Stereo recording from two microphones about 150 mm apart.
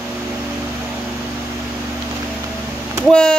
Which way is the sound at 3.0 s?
5° left (ahead or behind).